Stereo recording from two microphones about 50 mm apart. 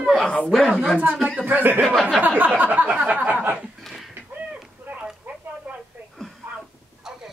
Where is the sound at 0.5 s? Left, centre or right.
Centre.